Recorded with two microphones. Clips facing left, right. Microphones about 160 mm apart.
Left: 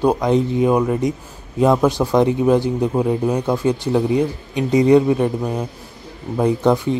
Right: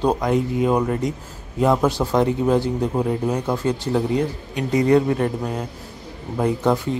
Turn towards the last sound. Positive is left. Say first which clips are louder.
# left 4 dB
turn(degrees=15)  # may be behind; listen again after turning